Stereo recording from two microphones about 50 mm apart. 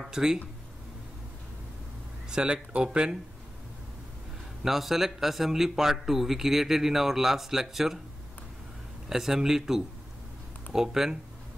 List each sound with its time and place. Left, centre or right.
0.0 s a man's voice: centre
2.2 s speech: centre
4.6 s a man's voice: centre
9.1 s a man's voice: centre